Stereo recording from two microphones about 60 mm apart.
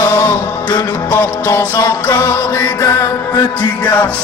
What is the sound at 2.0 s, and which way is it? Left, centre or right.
Music, left.